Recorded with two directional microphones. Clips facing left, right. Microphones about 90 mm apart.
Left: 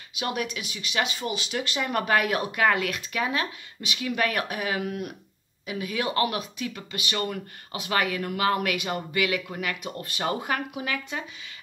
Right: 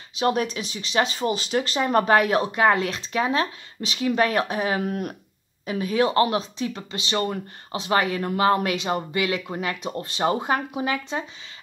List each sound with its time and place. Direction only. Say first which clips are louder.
0.1 s speech: right 7 dB; 35° right (ahead or behind)